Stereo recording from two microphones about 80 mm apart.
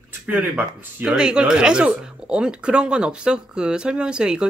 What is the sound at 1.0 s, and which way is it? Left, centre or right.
Speech, centre.